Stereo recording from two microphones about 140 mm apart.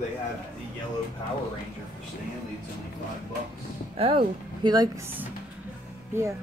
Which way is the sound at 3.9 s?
40° right (ahead or behind).